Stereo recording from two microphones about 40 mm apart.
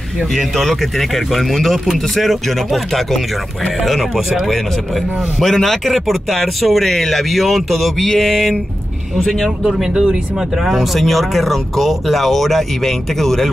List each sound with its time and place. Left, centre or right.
0.4 s speech: centre
8.0 s a sound: centre
9.6 s speech: centre
10.6 s speech: centre